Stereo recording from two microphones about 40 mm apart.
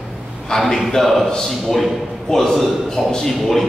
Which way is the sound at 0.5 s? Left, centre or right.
Centre.